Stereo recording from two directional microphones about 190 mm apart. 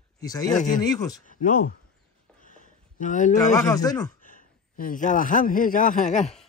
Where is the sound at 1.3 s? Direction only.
45° left (ahead or behind).